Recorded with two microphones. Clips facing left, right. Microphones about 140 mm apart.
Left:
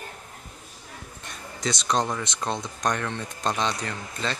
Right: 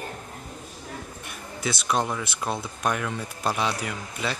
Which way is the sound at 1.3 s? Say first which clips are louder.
Left 1 dB; 5° right (ahead or behind).